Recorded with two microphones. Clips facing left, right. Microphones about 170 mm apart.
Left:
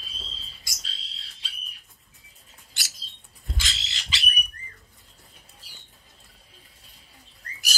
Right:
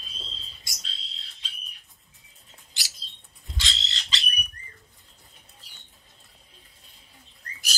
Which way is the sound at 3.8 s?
5° left (ahead or behind).